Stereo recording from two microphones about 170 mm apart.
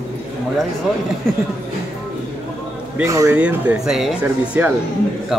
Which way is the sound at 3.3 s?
10° right (ahead or behind).